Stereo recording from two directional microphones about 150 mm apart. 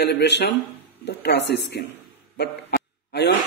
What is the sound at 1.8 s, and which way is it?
Speech, 90° left.